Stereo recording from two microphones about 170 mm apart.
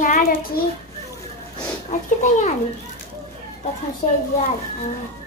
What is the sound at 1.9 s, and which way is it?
Speech, 45° left (ahead or behind).